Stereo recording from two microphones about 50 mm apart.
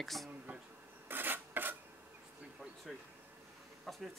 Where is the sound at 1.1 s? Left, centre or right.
Right.